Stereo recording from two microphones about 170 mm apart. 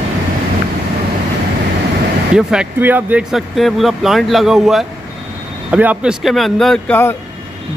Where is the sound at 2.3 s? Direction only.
5° right (ahead or behind).